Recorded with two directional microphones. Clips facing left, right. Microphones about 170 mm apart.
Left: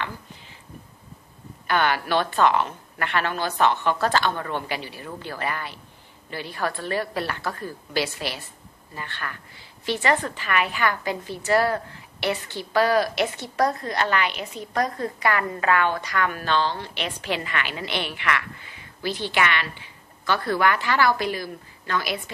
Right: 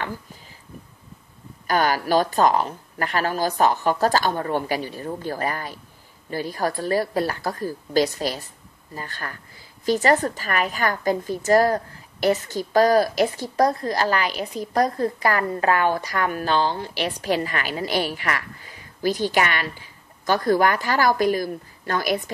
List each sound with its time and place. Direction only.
1.7 s a woman's voice: 40° right (ahead or behind)